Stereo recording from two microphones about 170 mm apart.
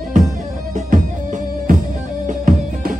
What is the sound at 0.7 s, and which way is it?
Music, 50° right (ahead or behind).